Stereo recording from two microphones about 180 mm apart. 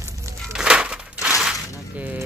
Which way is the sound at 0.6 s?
5° right (ahead or behind).